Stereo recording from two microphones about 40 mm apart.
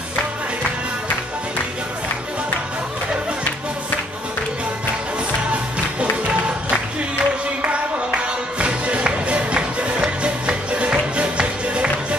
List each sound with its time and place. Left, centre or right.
5.5 s music: right